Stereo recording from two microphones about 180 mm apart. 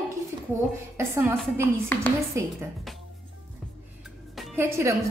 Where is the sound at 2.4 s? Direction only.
15° right (ahead or behind).